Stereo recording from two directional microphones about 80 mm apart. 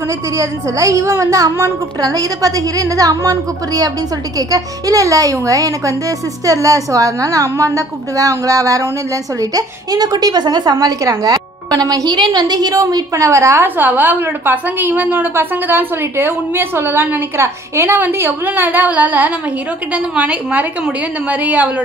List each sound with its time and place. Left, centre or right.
0.4 s a woman's voice: right
13.7 s a woman's voice: right